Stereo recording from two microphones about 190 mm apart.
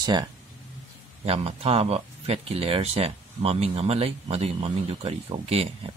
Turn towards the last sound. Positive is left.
turn(degrees=-30)  # may be behind; listen again after turning